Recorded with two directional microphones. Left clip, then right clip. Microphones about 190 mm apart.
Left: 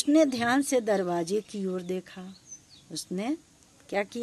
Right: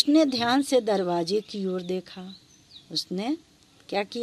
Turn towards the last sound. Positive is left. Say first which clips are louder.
# right 2 dB
turn(degrees=-10)  # may be behind; listen again after turning